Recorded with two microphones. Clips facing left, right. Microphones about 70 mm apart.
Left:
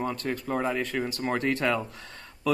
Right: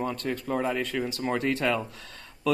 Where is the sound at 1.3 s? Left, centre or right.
Centre.